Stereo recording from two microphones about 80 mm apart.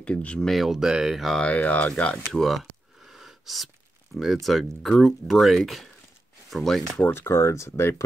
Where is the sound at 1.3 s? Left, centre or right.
Centre.